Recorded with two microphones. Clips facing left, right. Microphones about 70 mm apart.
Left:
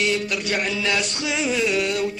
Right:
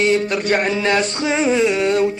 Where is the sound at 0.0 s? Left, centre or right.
Right.